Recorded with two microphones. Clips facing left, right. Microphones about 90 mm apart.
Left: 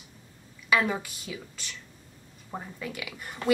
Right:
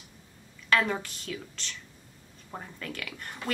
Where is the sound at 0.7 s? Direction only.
5° left (ahead or behind).